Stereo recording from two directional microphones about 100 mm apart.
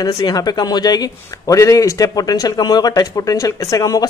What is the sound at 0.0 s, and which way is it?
A man's voice, 40° left (ahead or behind).